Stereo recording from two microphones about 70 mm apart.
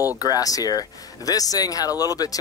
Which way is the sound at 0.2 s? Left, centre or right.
Left.